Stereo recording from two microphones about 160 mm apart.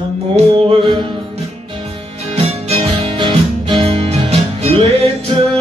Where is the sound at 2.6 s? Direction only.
35° right (ahead or behind).